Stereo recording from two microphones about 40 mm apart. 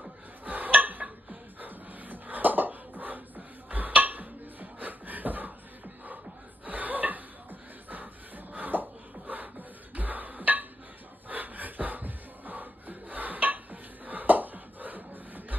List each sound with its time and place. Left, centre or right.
0.5 s music: right
6.6 s chuckle: right
8.5 s beatboxing: right
11.2 s music: right